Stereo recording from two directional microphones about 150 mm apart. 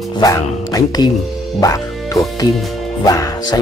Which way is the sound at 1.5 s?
25° left (ahead or behind).